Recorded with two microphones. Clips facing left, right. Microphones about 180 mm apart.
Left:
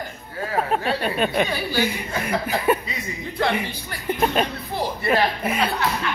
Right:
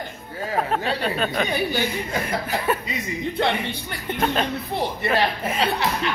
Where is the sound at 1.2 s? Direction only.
20° left (ahead or behind).